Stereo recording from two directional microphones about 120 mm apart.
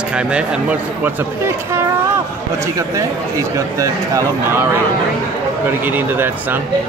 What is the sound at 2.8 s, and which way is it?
Speech, 25° right (ahead or behind).